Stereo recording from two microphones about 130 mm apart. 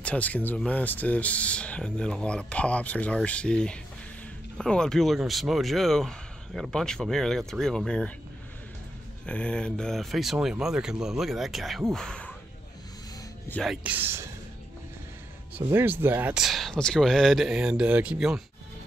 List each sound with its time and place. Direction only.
0.0 s speech: 10° left (ahead or behind)
9.2 s speech: 10° left (ahead or behind)
13.7 s speech: 10° right (ahead or behind)
15.5 s speech: 15° right (ahead or behind)
16.3 s speech: centre (ahead or behind)